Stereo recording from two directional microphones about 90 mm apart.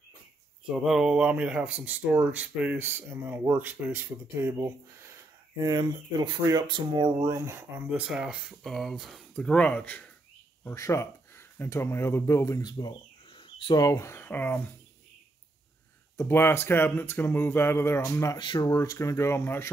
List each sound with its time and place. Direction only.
0.7 s speech: 5° right (ahead or behind); by 5.1 s 30° right (ahead or behind)
5.6 s speech: 55° right (ahead or behind)
7.2 s speech: 35° right (ahead or behind)
7.9 s speech: 5° right (ahead or behind)
9.3 s speech: 10° left (ahead or behind)
10.6 s speech: 30° left (ahead or behind)
12.6 s bird: 55° left (ahead or behind)
13.7 s speech: 40° left (ahead or behind); by 14.6 s 20° left (ahead or behind)
16.2 s speech: 25° left (ahead or behind)
18.4 s speech: 55° left (ahead or behind); by 19.7 s 25° left (ahead or behind)